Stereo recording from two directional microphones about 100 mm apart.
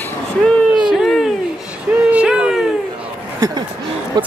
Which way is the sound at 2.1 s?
10° right (ahead or behind).